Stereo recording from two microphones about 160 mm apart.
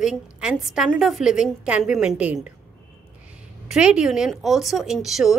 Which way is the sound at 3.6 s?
5° right (ahead or behind).